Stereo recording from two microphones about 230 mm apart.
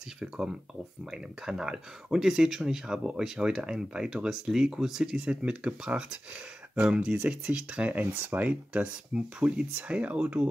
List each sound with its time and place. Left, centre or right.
0.2 s speech: centre